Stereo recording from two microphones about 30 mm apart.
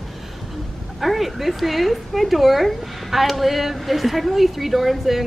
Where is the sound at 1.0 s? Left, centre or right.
Centre.